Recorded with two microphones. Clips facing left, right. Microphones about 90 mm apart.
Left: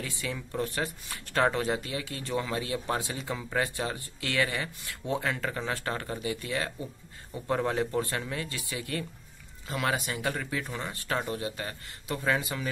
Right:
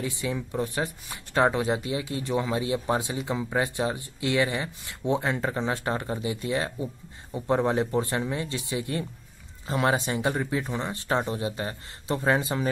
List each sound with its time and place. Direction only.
0.0 s speech: 20° right (ahead or behind)